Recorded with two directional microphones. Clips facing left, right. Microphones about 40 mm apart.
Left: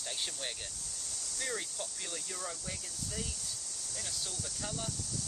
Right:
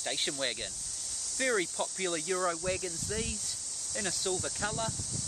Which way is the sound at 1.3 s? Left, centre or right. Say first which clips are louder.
Right 9 dB; right.